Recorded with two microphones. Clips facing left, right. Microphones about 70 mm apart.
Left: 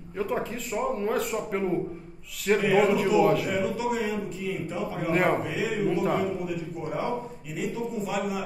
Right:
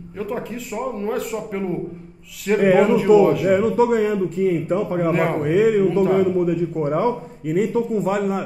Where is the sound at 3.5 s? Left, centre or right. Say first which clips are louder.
Right 11 dB; right.